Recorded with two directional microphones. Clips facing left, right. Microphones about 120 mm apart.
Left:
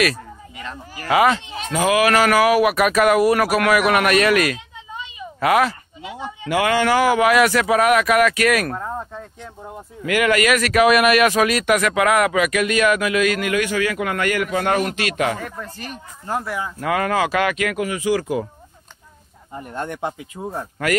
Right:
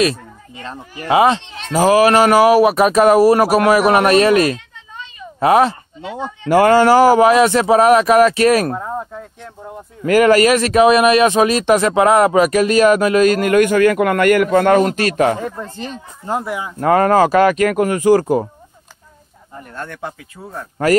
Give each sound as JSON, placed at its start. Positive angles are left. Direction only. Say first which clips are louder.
{"t": 0.0, "sound": "speech", "louder": "right 4 dB", "side_deg": -30}
{"t": 5.9, "sound": "speech", "louder": "right 5 dB", "side_deg": 10}
{"t": 6.5, "sound": "speech", "louder": "right 8 dB", "side_deg": -40}
{"t": 8.7, "sound": "speech", "louder": "right 3 dB", "side_deg": -5}
{"t": 10.0, "sound": "speech", "louder": "right 7 dB", "side_deg": -40}
{"t": 14.8, "sound": "speech", "louder": "right 7 dB", "side_deg": -40}
{"t": 15.6, "sound": "speech", "louder": "right 5 dB", "side_deg": -25}
{"t": 16.7, "sound": "speech", "louder": "right 9 dB", "side_deg": -40}
{"t": 19.5, "sound": "speech", "louder": "left 2 dB", "side_deg": 20}